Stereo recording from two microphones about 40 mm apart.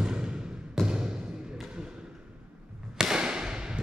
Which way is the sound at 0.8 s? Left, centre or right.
Right.